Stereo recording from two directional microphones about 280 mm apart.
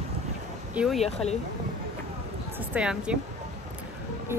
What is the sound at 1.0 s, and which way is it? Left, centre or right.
Speech, left.